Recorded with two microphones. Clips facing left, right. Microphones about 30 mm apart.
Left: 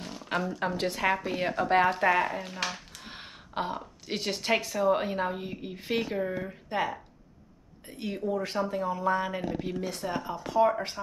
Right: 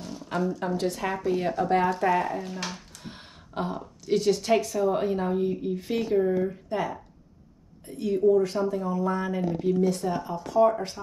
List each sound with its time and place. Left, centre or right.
0.0 s a woman's voice: left; by 10.3 s centre
10.3 s a woman's voice: left